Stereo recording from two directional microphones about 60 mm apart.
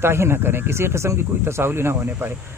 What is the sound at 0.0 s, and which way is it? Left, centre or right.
Speech, right.